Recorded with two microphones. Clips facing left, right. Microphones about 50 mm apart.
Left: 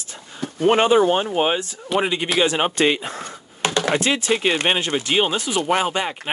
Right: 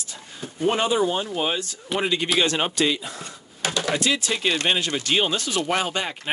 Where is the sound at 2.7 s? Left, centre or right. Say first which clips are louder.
Left 4 dB; left.